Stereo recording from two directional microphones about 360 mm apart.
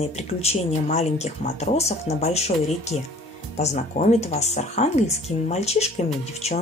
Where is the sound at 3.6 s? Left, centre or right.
Centre.